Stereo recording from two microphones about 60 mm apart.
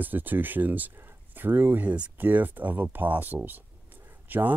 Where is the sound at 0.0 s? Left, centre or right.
Right.